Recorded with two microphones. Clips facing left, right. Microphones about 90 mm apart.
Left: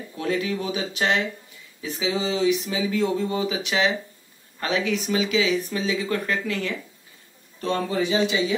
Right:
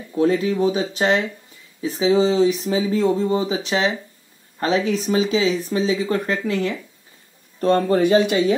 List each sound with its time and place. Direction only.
0.1 s speech: 30° right (ahead or behind)
7.6 s speech: 50° right (ahead or behind)